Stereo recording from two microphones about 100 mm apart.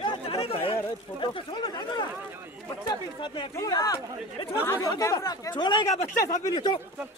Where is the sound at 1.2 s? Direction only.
50° left (ahead or behind).